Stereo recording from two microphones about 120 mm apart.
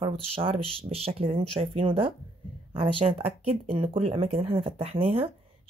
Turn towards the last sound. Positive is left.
turn(degrees=-55)  # may be behind; listen again after turning